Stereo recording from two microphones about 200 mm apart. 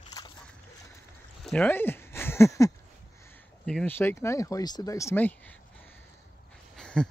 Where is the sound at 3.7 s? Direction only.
5° left (ahead or behind).